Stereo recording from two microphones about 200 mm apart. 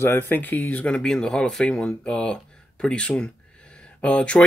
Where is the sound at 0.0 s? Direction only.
10° left (ahead or behind).